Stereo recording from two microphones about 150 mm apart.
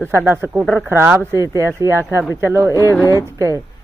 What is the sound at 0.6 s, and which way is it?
Speech, centre (ahead or behind).